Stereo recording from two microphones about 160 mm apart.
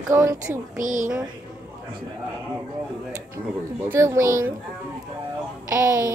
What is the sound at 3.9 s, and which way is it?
Speech, 15° right (ahead or behind).